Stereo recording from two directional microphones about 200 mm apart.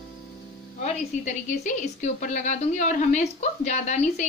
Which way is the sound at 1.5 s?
40° left (ahead or behind).